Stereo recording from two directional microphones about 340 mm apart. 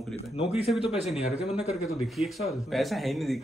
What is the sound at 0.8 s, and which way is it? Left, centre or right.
Speech, centre.